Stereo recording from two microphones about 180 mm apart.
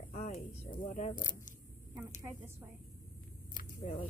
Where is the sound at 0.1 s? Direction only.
40° left (ahead or behind).